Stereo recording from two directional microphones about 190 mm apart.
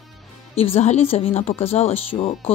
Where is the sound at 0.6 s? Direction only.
35° left (ahead or behind).